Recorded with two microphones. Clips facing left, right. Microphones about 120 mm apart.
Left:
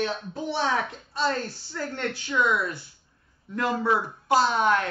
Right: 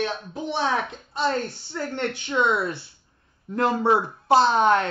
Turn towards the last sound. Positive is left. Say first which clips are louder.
# right 4 dB
turn(degrees=-30)  # may be behind; listen again after turning